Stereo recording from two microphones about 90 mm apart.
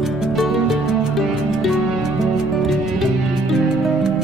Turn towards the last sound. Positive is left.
turn(degrees=0)  # may be behind; listen again after turning